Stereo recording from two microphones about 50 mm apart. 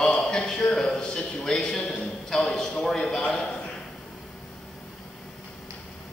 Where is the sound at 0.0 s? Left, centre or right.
Centre.